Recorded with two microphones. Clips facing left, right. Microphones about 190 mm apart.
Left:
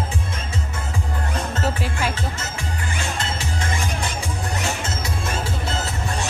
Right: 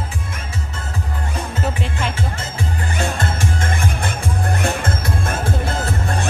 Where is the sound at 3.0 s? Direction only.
50° right (ahead or behind).